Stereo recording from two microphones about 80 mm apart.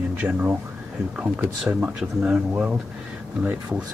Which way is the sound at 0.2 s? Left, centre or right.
Centre.